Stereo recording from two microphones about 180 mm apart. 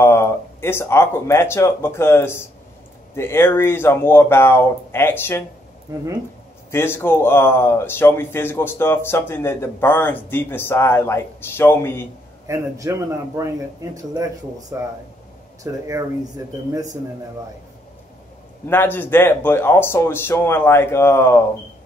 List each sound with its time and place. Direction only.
0.0 s speech: 15° left (ahead or behind)
6.7 s speech: 15° left (ahead or behind)
12.4 s a man's voice: 15° right (ahead or behind)
14.1 s a man's voice: 20° right (ahead or behind)
18.7 s speech: 10° left (ahead or behind)